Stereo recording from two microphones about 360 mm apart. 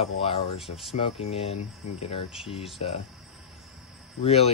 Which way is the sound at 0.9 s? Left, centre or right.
Centre.